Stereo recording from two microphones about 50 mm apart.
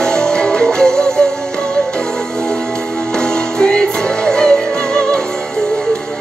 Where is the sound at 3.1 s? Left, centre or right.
Centre.